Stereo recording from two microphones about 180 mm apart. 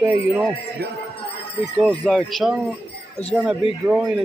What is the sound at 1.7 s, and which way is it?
Speech, 5° left (ahead or behind).